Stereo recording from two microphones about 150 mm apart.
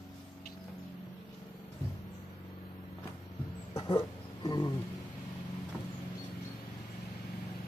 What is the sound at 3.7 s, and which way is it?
Dog, 30° left (ahead or behind).